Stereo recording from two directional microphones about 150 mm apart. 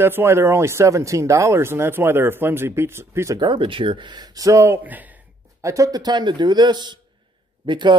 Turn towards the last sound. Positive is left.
turn(degrees=-30)  # may be behind; listen again after turning